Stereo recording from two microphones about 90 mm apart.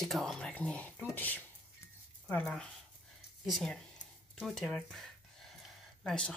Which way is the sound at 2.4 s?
5° left (ahead or behind).